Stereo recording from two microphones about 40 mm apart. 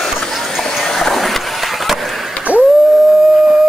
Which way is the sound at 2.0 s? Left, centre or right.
Centre.